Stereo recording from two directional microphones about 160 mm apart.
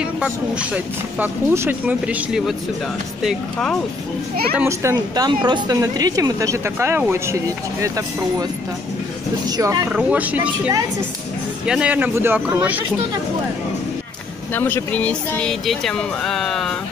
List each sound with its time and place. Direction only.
0.0 s speech: 5° right (ahead or behind)
4.6 s a woman's voice: 20° right (ahead or behind)
9.5 s a woman's voice: 25° right (ahead or behind)
9.8 s speech: 10° right (ahead or behind)
14.5 s speech: 15° left (ahead or behind)